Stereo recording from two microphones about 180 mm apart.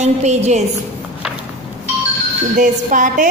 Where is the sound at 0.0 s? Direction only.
40° right (ahead or behind).